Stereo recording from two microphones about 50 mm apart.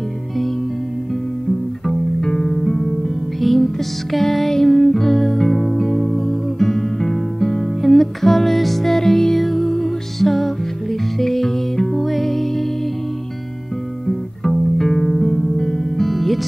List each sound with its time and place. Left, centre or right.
1.9 s music: centre
14.0 s music: centre